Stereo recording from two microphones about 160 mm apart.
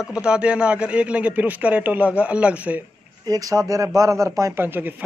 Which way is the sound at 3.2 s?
20° right (ahead or behind).